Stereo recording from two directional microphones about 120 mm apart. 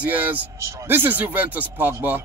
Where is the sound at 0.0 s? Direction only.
15° right (ahead or behind).